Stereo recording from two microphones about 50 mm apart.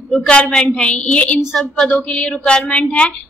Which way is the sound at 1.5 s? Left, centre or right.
Centre.